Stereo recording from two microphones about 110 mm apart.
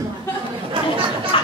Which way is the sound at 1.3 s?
55° left (ahead or behind).